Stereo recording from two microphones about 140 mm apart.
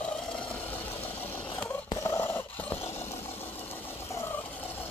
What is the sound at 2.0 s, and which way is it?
Roar, 20° left (ahead or behind).